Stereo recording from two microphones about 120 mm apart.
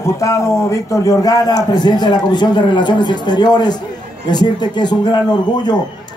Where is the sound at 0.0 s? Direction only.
25° left (ahead or behind).